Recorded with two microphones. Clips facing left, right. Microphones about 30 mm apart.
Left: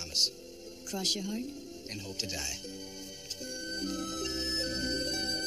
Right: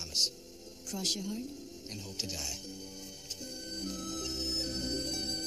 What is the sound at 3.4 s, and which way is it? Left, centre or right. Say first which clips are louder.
Music: left 4 dB; left.